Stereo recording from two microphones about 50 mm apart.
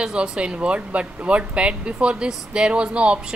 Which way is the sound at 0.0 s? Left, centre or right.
Centre.